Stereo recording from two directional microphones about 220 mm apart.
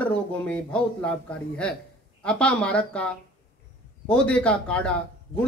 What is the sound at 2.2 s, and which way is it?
A man's voice, 5° left (ahead or behind).